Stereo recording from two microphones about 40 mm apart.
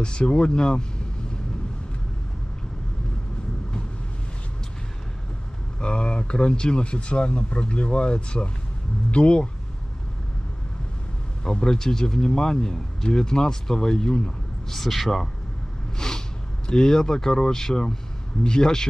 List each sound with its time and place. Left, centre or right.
0.0 s speech: left
5.8 s speech: left
11.4 s speech: centre
14.7 s speech: centre
16.0 s vehicle: centre
16.6 s speech: centre